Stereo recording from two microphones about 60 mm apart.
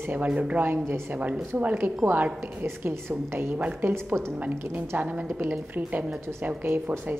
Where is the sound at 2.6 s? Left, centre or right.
Right.